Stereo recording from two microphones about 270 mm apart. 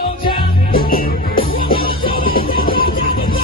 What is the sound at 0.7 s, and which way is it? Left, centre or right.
Music, left.